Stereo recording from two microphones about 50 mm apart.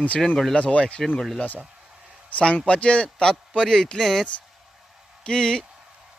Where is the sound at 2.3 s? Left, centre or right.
Left; by 4.2 s centre.